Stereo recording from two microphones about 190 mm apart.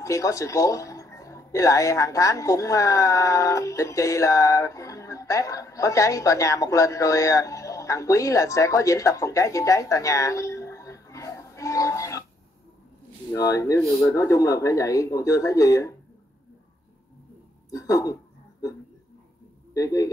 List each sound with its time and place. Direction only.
0.0 s speech: 15° left (ahead or behind)
13.3 s speech: 15° left (ahead or behind)
17.6 s speech: 15° left (ahead or behind)
19.7 s a man's voice: 15° left (ahead or behind)